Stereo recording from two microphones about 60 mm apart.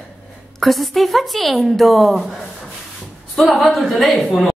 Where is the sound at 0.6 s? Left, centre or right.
Centre.